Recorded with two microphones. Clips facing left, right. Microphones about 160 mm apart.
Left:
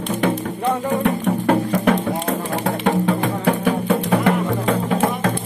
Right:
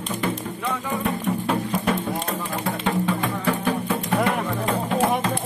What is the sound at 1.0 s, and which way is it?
Music, 70° left (ahead or behind).